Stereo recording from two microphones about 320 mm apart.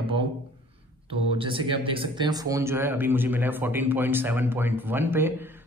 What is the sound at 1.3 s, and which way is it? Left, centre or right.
A man's voice, centre.